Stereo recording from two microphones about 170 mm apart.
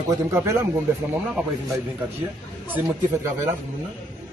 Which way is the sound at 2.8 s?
15° right (ahead or behind).